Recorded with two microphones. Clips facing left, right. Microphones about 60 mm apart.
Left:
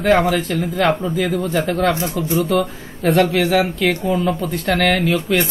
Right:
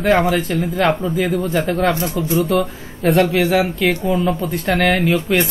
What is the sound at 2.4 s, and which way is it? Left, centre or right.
Speech, centre.